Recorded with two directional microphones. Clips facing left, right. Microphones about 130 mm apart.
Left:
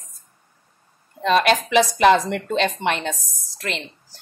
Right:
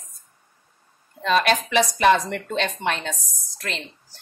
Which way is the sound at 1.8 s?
20° left (ahead or behind).